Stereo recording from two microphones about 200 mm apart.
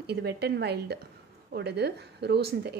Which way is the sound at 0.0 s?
55° right (ahead or behind).